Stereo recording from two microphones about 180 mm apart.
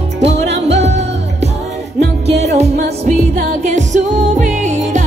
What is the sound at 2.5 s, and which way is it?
Music, 35° right (ahead or behind).